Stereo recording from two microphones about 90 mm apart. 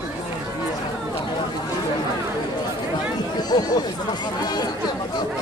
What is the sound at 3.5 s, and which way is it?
Speech, 50° left (ahead or behind).